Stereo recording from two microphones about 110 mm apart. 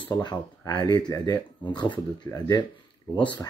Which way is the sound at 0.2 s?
40° left (ahead or behind).